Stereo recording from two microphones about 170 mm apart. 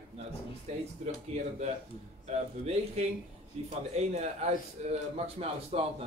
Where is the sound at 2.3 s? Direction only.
40° right (ahead or behind).